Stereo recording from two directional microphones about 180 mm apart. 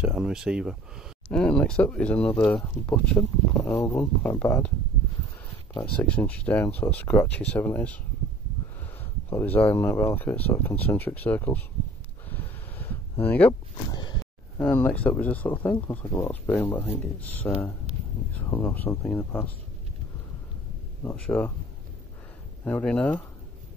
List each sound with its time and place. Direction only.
0.0 s speech: 5° right (ahead or behind); by 4.6 s 15° left (ahead or behind)
6.2 s speech: 10° left (ahead or behind)
9.3 s speech: 10° left (ahead or behind)
12.3 s a sound: 10° left (ahead or behind)
13.5 s speech: 25° left (ahead or behind)
14.6 s speech: 10° left (ahead or behind)
21.0 s speech: 10° left (ahead or behind)
22.7 s speech: 5° left (ahead or behind)